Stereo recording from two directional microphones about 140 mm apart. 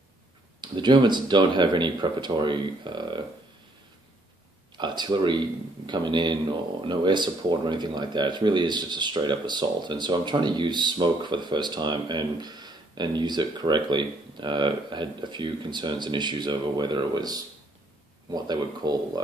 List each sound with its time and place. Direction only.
0.6 s speech: 30° right (ahead or behind)
4.7 s speech: 30° right (ahead or behind)